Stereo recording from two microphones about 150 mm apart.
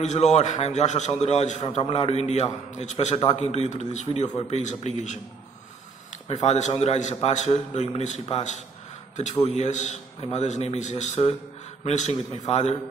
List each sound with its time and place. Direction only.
0.0 s a man's voice: 50° left (ahead or behind)
1.8 s a man's voice: 40° left (ahead or behind)
6.2 s a man's voice: 50° left (ahead or behind)